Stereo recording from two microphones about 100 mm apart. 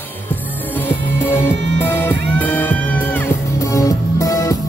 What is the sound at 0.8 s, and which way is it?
Music, 20° left (ahead or behind).